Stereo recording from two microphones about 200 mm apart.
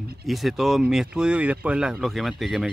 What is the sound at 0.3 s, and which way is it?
Speech, centre (ahead or behind).